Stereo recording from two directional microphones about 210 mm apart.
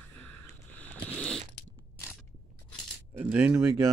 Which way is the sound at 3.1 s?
10° right (ahead or behind).